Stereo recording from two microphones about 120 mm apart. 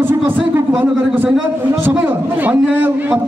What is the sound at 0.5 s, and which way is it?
A man's voice, 15° right (ahead or behind).